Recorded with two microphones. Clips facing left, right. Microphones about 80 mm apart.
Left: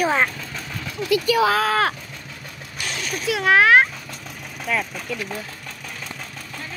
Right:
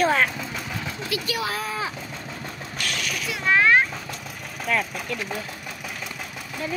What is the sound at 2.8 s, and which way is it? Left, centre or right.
Speech, left.